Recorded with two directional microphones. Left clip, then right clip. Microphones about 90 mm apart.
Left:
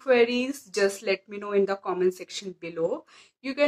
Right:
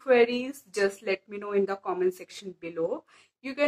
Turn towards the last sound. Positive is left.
turn(degrees=30)  # may be behind; listen again after turning